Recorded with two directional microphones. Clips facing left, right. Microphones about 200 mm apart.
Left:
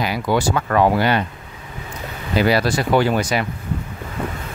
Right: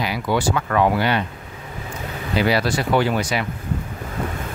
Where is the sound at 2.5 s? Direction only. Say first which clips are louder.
Left 2 dB; 45° left (ahead or behind).